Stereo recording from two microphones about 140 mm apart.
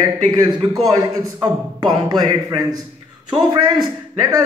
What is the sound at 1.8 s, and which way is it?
A man's voice, 30° right (ahead or behind).